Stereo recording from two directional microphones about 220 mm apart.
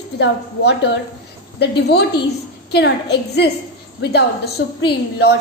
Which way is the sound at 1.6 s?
50° left (ahead or behind).